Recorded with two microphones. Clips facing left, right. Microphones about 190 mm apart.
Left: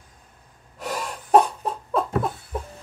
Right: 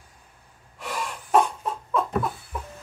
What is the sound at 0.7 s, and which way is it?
Gasp, 40° left (ahead or behind).